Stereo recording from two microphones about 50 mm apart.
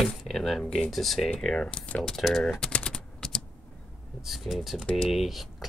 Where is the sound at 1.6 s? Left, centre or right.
Left.